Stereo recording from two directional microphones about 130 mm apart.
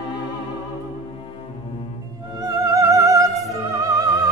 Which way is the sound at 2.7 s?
25° right (ahead or behind).